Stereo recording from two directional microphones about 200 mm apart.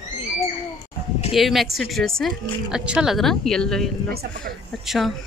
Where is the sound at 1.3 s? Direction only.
Centre (ahead or behind).